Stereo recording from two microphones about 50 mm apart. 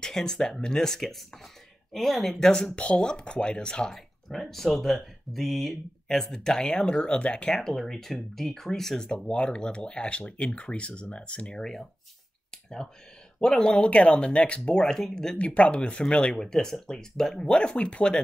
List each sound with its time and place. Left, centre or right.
0.0 s speech: centre
2.7 s speech: left
13.4 s speech: centre
13.7 s speech: left
15.3 s speech: left